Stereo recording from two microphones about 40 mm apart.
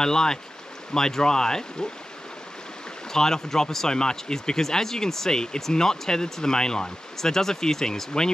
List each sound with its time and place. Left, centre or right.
0.0 s speech: centre
3.1 s speech: centre